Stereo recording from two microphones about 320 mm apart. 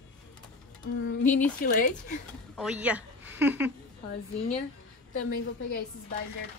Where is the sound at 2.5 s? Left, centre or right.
Centre.